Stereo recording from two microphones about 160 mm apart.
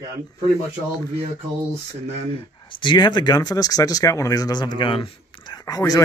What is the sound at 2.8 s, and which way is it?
Speech, 30° left (ahead or behind).